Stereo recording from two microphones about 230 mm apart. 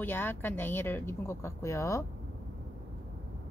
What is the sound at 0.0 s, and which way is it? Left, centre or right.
Speech, centre.